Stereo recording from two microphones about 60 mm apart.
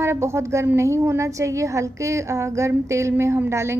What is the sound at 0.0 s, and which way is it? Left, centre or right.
A woman's voice, right.